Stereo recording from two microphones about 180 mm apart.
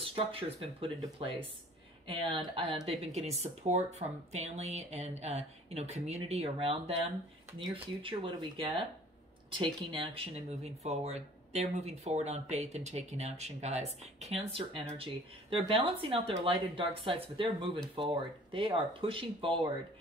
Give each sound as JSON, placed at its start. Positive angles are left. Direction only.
{"t": 0.0, "sound": "speech", "side_deg": -30}
{"t": 2.0, "sound": "speech", "side_deg": -30}